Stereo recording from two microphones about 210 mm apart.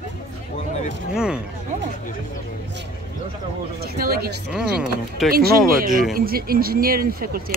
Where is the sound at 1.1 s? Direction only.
5° right (ahead or behind).